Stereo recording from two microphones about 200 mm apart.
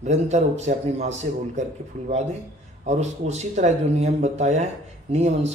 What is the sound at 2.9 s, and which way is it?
Speech, 35° right (ahead or behind).